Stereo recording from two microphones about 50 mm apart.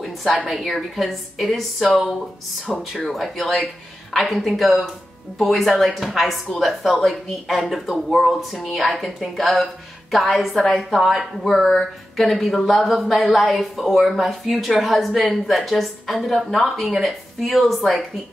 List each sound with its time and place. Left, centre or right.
0.5 s speech: centre
1.9 s speech: centre
2.8 s speech: centre